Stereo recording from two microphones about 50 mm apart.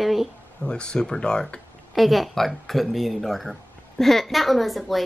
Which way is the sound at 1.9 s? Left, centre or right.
Centre.